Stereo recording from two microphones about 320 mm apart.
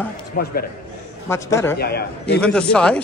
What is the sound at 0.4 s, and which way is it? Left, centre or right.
Speech, left.